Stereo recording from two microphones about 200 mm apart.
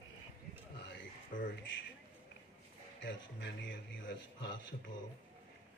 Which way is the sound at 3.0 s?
65° left (ahead or behind).